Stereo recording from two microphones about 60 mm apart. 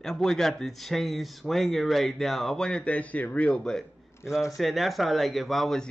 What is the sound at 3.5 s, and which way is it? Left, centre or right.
Speech, centre.